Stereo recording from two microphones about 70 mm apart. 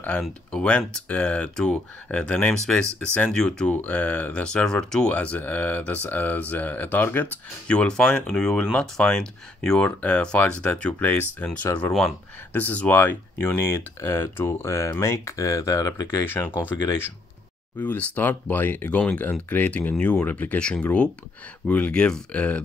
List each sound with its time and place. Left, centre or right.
0.5 s speech: centre
7.6 s speech: centre; by 16.1 s left
16.2 s speech: left
17.7 s speech: left